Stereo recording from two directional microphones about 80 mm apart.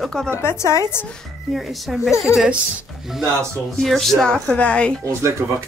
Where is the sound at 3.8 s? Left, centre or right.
Centre.